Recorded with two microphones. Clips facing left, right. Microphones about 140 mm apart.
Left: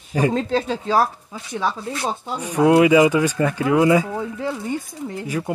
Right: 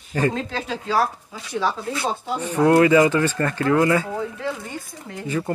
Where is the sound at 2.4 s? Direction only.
10° left (ahead or behind).